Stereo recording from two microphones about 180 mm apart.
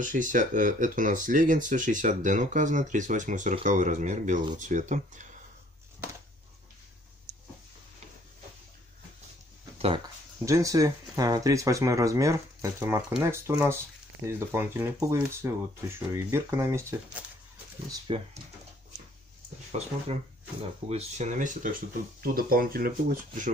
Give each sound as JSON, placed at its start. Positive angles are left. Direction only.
{"t": 0.0, "sound": "speech", "side_deg": -45}
{"t": 10.4, "sound": "speech", "side_deg": -15}
{"t": 18.0, "sound": "speech", "side_deg": -30}
{"t": 19.7, "sound": "speech", "side_deg": -40}